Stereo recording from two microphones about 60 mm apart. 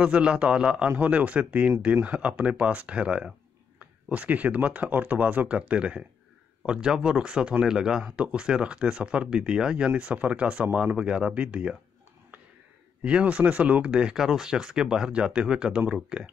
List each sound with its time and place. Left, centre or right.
0.0 s speech: centre
13.0 s speech: right